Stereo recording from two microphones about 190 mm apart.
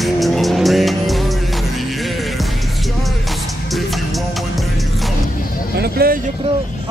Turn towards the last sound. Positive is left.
turn(degrees=-55)  # may be behind; listen again after turning